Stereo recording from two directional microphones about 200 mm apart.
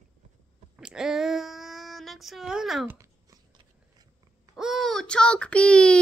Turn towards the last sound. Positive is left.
turn(degrees=5)  # may be behind; listen again after turning